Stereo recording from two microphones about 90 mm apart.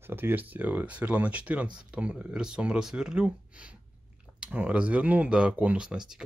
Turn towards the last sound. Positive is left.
turn(degrees=-10)  # may be behind; listen again after turning